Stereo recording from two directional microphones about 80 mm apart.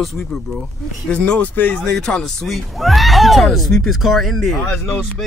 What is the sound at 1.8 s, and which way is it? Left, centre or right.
Speech, centre.